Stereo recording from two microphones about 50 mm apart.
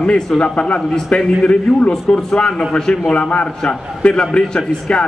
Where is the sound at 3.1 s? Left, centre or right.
Left.